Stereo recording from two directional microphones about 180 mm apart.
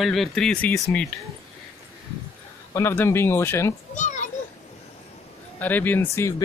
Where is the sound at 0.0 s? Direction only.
Centre (ahead or behind).